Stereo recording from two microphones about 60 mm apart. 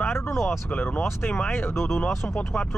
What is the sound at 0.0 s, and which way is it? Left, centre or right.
Vehicle, left.